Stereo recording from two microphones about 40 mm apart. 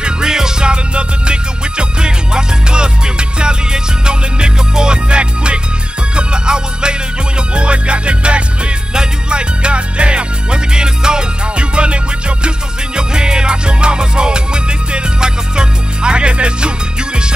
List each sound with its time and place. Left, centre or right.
0.0 s music: centre